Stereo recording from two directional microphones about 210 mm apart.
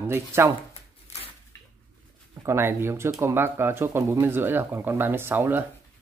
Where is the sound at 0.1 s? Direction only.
10° right (ahead or behind).